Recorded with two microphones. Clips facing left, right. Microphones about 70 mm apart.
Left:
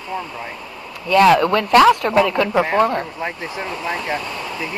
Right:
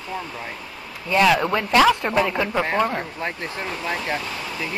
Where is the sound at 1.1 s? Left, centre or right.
Left.